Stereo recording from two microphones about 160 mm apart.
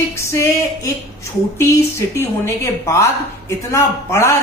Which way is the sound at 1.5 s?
15° left (ahead or behind).